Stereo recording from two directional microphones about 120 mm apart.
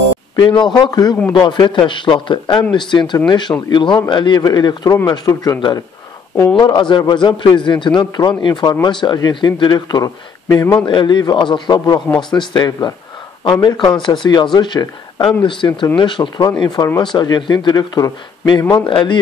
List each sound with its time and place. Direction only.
0.4 s a man's voice: 40° left (ahead or behind)
6.6 s a man's voice: 40° left (ahead or behind)
10.9 s a man's voice: 40° left (ahead or behind)
18.9 s speech: 45° left (ahead or behind)